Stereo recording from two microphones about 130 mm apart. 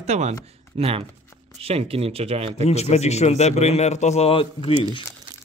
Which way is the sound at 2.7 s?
55° left (ahead or behind).